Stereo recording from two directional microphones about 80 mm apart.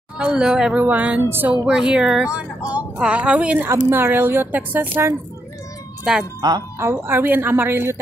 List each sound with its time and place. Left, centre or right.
0.2 s speech: centre
0.7 s speech: centre
3.6 s a woman's voice: right
6.1 s speech: centre
6.4 s speech: right
6.8 s a woman's voice: right